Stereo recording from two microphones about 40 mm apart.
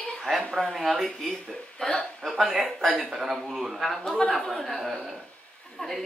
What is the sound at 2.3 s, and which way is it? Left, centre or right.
Speech, centre.